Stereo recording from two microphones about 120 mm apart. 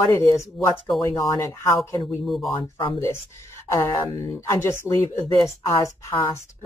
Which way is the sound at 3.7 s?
25° left (ahead or behind).